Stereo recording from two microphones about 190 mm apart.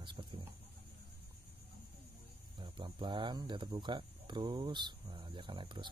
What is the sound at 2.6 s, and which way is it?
Speech, 25° right (ahead or behind).